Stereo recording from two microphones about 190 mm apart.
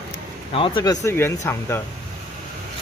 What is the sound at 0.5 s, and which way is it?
Speech, 25° left (ahead or behind).